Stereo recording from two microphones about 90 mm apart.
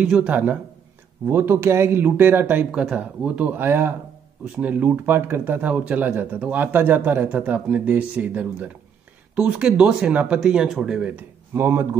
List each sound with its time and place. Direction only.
0.0 s speech: 10° right (ahead or behind)
11.5 s speech: 25° right (ahead or behind)